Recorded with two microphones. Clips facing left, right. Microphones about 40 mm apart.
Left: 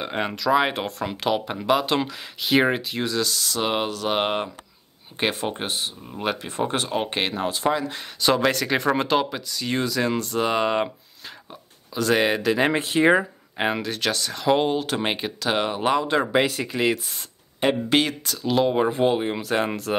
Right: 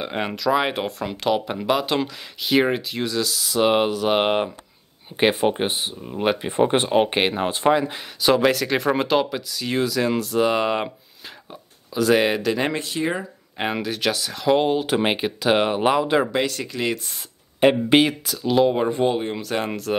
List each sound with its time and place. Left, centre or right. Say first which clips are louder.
0.0 s speech: right 1 dB; centre; by 7.9 s right
7.9 s speech: right 2 dB; centre
11.9 s speech: right 2 dB; centre
12.7 s speech: left 6 dB; left
13.6 s speech: even; centre
16.3 s speech: left 2 dB; centre
17.6 s speech: right 5 dB; centre
18.2 s speech: right 3 dB; centre